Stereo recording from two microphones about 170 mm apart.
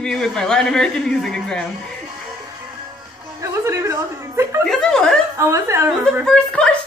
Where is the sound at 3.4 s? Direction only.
20° right (ahead or behind).